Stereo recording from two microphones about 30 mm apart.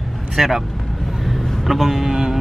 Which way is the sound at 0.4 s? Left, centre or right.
Centre.